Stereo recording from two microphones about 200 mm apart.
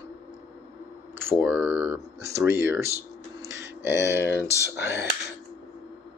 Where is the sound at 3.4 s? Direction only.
10° right (ahead or behind).